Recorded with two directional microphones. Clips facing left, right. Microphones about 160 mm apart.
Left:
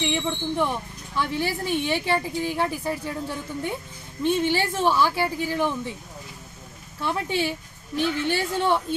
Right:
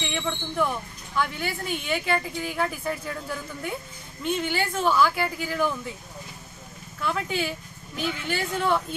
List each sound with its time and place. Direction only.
0.0 s speech: 25° left (ahead or behind)
7.0 s speech: 30° left (ahead or behind)